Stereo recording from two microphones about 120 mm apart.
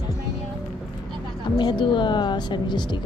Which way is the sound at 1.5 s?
40° left (ahead or behind).